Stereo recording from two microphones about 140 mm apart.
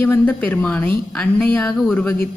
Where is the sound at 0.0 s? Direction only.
15° left (ahead or behind).